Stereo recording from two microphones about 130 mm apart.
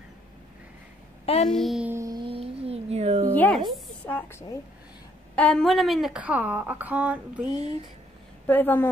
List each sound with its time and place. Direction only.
1.2 s a sound: 50° left (ahead or behind)
1.5 s a child's voice: centre (ahead or behind)
1.9 s music: 20° right (ahead or behind)
2.1 s a sound: 45° right (ahead or behind)
3.3 s speech: 10° left (ahead or behind)
5.3 s a woman's voice: 10° left (ahead or behind); by 7.4 s 10° right (ahead or behind)
7.5 s speech: 50° right (ahead or behind)
8.5 s a woman's voice: 15° left (ahead or behind)